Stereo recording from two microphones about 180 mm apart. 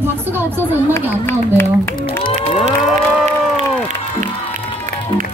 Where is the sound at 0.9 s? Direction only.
15° left (ahead or behind).